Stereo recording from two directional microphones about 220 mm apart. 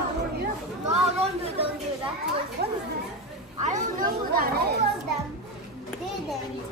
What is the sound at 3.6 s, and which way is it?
Chatter, 35° right (ahead or behind).